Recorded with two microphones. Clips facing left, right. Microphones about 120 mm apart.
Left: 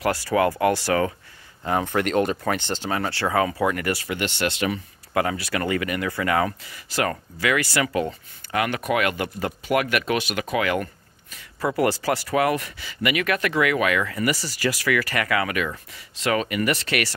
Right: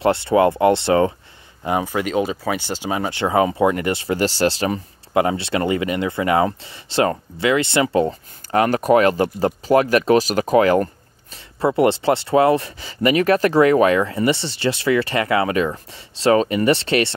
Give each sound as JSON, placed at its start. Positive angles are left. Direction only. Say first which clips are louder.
{"t": 0.0, "sound": "speech", "louder": "right 6 dB", "side_deg": -25}
{"t": 1.6, "sound": "speech", "louder": "right 2 dB", "side_deg": -10}